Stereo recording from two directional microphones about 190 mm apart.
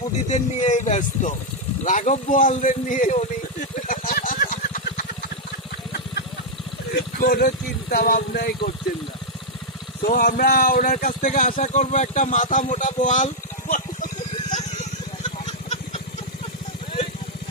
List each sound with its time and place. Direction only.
0.3 s speech: 35° left (ahead or behind)
3.8 s vehicle: 45° left (ahead or behind)
6.9 s speech: 50° left (ahead or behind)
10.0 s speech: 50° left (ahead or behind)